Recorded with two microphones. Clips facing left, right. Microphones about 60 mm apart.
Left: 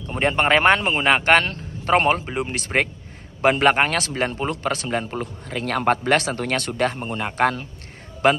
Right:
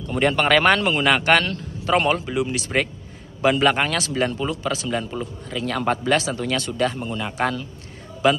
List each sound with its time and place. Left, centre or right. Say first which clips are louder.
0.0 s a man's voice: right 1 dB; left